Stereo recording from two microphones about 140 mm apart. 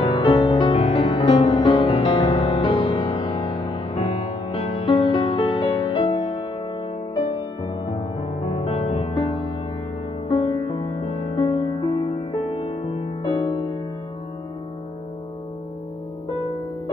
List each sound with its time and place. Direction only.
0.0 s music: 40° left (ahead or behind)
10.4 s music: 35° left (ahead or behind)